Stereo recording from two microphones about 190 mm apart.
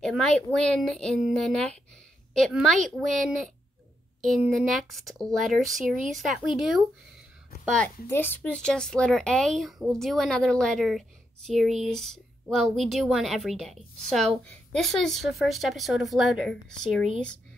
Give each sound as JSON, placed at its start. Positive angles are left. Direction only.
{"t": 0.0, "sound": "a woman's voice", "side_deg": 5}
{"t": 2.7, "sound": "speech", "side_deg": -40}
{"t": 3.2, "sound": "a woman's voice", "side_deg": 0}